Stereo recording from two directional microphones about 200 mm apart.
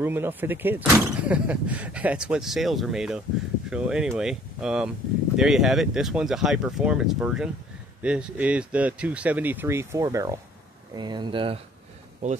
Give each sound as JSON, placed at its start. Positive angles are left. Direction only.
{"t": 0.0, "sound": "speech", "side_deg": -10}